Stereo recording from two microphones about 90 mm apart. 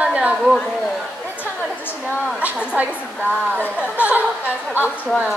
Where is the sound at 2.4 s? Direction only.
15° right (ahead or behind).